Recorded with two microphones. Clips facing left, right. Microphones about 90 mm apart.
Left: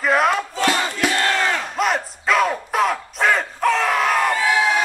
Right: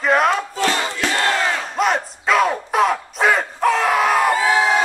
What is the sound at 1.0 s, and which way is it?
Battle cry, 10° left (ahead or behind).